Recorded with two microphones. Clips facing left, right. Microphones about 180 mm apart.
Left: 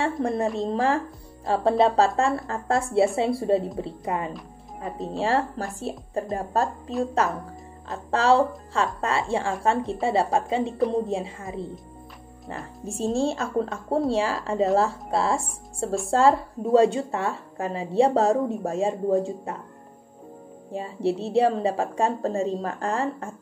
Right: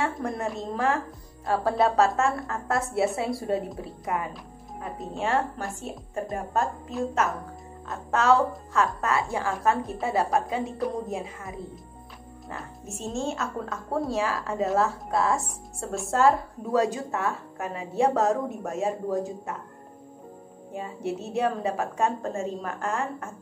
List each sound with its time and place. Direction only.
0.2 s a woman's voice: 30° left (ahead or behind)
4.9 s a woman's voice: centre (ahead or behind)
5.8 s a woman's voice: 35° left (ahead or behind)
20.7 s a woman's voice: 30° left (ahead or behind)